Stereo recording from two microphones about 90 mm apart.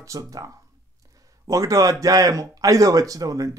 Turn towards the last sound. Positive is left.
turn(degrees=-40)  # may be behind; listen again after turning